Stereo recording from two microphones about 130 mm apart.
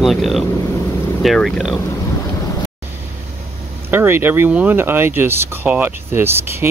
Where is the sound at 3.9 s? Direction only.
15° right (ahead or behind).